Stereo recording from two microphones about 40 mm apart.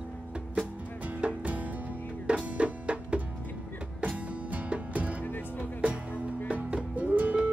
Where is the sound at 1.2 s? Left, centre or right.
Right.